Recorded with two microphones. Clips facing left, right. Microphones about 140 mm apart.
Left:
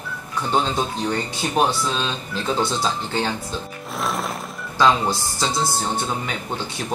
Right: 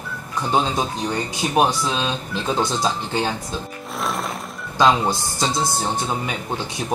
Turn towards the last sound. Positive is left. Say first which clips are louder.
# right 1 dB
turn(degrees=-15)  # may be behind; listen again after turning